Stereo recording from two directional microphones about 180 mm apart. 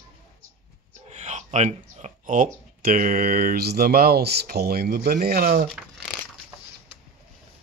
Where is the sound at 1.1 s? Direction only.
40° right (ahead or behind); by 5.7 s 55° right (ahead or behind).